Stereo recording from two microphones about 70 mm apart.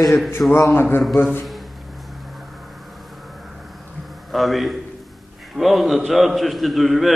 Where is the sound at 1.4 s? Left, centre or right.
Centre.